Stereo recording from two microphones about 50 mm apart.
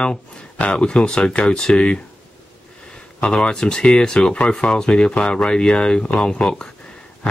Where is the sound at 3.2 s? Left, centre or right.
Left.